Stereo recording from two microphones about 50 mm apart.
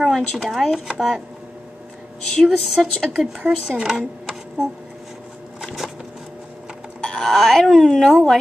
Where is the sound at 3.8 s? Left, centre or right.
Centre.